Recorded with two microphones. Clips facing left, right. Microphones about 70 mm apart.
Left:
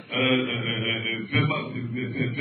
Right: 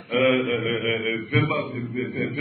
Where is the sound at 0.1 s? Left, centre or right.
Centre.